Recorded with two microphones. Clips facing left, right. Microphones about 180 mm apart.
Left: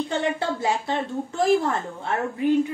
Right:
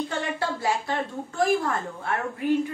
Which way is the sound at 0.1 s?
20° left (ahead or behind).